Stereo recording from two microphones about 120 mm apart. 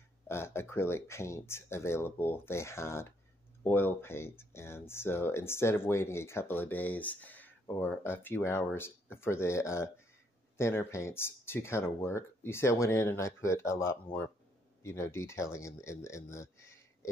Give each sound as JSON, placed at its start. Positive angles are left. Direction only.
{"t": 0.3, "sound": "speech", "side_deg": 20}